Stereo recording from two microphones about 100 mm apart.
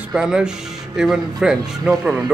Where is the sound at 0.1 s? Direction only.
5° right (ahead or behind).